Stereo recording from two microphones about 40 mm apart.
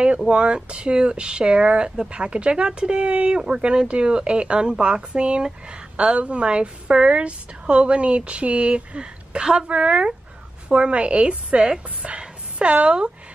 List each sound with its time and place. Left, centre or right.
0.3 s speech: right